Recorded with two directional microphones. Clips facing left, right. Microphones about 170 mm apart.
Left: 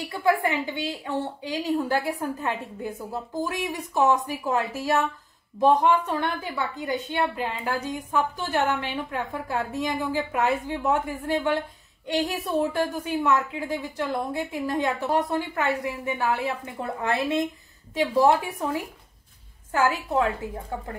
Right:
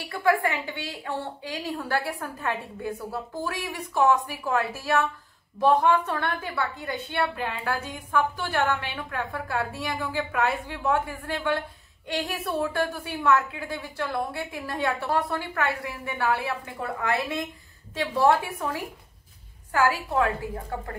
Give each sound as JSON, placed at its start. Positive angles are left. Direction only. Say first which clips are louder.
{"t": 0.1, "sound": "a woman's voice", "louder": "even", "side_deg": 20}